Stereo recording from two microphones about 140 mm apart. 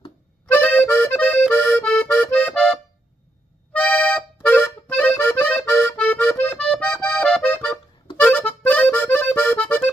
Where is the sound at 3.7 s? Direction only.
10° left (ahead or behind).